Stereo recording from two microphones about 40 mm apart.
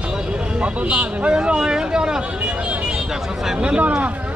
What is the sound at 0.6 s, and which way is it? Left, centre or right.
Speech, right.